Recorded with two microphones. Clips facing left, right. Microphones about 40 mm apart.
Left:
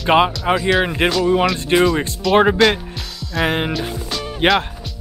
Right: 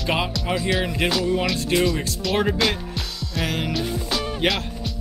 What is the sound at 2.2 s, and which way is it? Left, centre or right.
Speech, centre.